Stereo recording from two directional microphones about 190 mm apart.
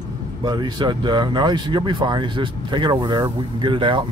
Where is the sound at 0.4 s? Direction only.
25° right (ahead or behind).